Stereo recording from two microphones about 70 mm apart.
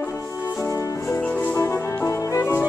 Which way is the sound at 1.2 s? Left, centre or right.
Left.